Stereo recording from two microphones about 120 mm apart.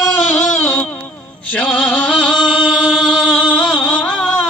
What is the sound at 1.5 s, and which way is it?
Chant, 10° left (ahead or behind).